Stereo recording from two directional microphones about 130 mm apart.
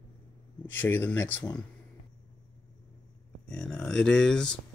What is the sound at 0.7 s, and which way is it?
Speech, 15° left (ahead or behind).